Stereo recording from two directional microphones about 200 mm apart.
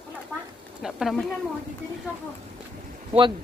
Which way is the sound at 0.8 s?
Centre (ahead or behind).